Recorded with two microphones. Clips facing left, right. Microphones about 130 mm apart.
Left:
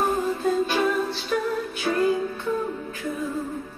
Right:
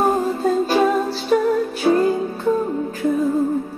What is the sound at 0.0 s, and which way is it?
Music, 35° right (ahead or behind).